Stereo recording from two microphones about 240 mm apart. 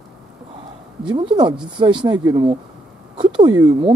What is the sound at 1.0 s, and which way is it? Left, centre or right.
Speech, centre.